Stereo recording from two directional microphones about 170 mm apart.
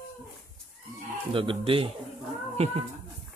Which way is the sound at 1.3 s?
30° right (ahead or behind).